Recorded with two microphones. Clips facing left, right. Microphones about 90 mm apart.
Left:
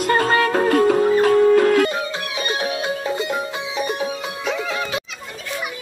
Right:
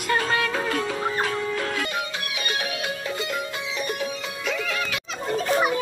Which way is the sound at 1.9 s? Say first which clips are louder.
Left 5 dB; 30° left (ahead or behind).